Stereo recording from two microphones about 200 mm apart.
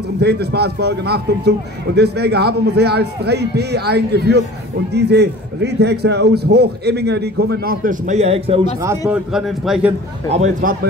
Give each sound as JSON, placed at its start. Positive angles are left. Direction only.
{"t": 0.2, "sound": "a man's voice", "side_deg": -55}
{"t": 9.1, "sound": "a man's voice", "side_deg": 0}
{"t": 10.3, "sound": "speech", "side_deg": -40}